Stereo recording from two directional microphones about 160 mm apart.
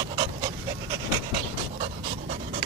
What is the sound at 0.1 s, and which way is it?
Dog, 30° right (ahead or behind).